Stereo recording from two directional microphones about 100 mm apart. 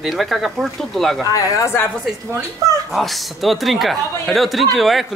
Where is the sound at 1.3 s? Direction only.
35° left (ahead or behind).